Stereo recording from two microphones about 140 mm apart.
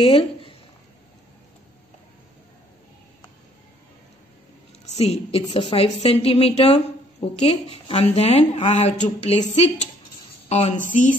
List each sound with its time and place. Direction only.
0.0 s speech: 40° left (ahead or behind)
4.8 s a woman's voice: 50° left (ahead or behind)
10.5 s a woman's voice: 55° left (ahead or behind)